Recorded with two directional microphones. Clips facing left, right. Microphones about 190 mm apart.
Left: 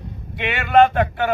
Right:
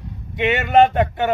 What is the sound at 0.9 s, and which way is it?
Speech, 20° right (ahead or behind).